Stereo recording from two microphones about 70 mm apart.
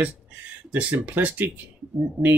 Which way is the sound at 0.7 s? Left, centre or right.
Centre.